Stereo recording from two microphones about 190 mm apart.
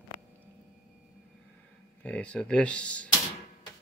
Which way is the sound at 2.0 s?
5° left (ahead or behind).